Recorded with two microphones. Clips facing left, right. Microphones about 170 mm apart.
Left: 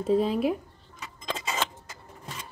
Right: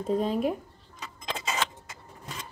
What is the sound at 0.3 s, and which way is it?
Speech, 45° right (ahead or behind).